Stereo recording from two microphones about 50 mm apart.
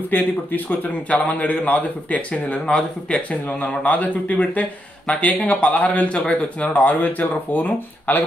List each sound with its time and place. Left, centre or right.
0.1 s speech: left
1.1 s speech: left